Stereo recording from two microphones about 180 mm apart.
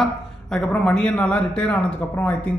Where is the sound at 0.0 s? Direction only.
5° left (ahead or behind).